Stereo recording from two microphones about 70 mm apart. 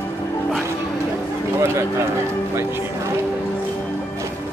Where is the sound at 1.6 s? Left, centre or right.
Right.